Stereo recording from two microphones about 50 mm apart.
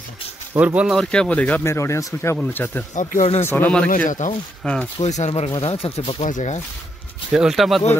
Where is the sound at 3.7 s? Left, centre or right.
Centre.